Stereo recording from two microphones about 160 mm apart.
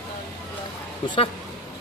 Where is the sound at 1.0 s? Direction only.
30° left (ahead or behind).